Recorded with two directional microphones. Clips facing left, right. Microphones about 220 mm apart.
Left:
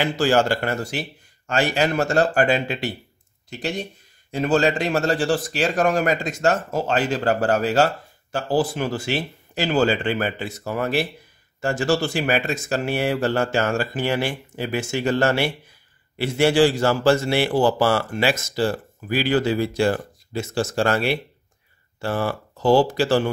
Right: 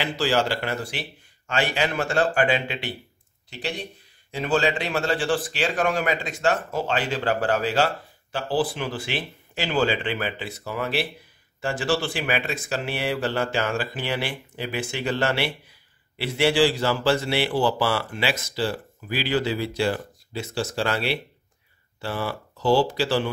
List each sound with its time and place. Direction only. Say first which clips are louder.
0.0 s speech: left 4 dB; 45° left (ahead or behind)